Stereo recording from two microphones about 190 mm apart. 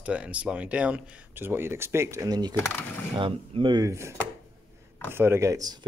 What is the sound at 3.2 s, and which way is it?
Speech, 25° right (ahead or behind).